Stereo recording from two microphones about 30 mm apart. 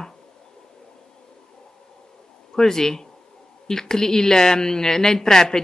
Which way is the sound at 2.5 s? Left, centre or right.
Centre.